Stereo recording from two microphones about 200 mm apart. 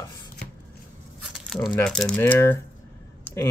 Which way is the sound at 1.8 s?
5° left (ahead or behind).